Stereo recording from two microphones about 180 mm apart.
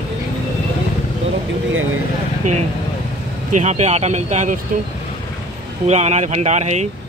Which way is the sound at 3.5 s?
40° right (ahead or behind).